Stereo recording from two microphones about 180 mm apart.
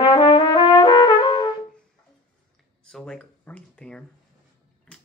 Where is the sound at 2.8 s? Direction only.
5° left (ahead or behind).